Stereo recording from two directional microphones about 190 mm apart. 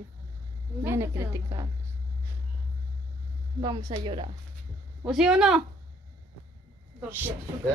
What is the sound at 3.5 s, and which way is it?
Speech, 20° right (ahead or behind).